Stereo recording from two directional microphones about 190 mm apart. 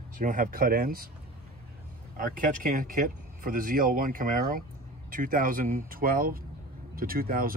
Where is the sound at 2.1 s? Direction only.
45° right (ahead or behind).